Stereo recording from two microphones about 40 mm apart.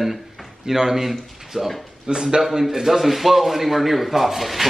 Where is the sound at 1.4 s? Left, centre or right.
Centre.